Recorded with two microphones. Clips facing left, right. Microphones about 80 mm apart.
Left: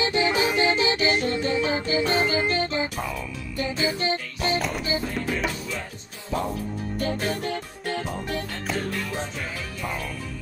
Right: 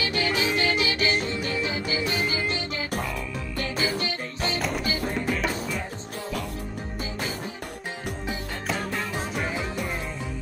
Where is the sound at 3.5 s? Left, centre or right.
Centre.